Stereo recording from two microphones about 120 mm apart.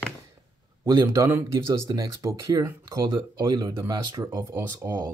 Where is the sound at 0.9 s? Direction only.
25° right (ahead or behind).